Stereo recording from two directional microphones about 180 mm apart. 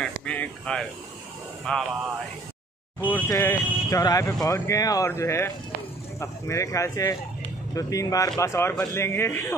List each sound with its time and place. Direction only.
0.0 s a sound: 5° left (ahead or behind)
1.7 s speech: 5° left (ahead or behind)
3.1 s speech: 15° left (ahead or behind)